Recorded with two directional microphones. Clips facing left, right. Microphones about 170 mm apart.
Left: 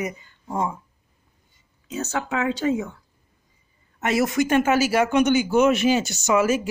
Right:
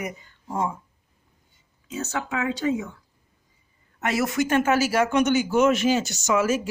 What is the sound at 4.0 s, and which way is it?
Speech, 20° left (ahead or behind).